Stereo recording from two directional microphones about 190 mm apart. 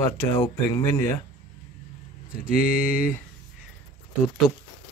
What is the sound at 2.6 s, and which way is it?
Speech, 50° left (ahead or behind).